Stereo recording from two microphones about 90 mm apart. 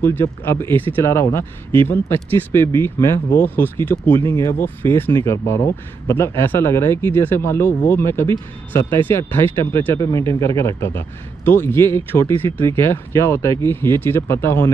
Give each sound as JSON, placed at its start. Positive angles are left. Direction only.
{"t": 0.0, "sound": "speech", "side_deg": 25}